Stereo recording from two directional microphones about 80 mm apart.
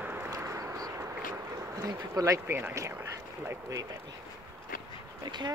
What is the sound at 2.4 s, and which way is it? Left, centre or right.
Speech, right.